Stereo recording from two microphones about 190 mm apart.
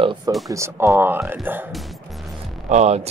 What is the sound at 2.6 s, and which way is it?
Speech, 35° right (ahead or behind).